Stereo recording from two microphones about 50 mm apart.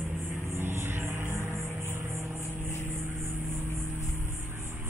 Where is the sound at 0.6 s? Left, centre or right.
Right.